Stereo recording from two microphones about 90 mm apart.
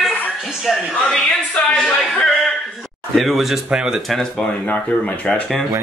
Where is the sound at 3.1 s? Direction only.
Centre (ahead or behind).